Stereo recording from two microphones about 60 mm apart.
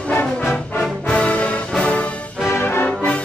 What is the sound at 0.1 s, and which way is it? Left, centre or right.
Music, left.